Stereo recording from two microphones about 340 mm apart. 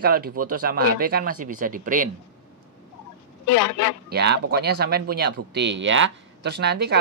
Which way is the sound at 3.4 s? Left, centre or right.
Left.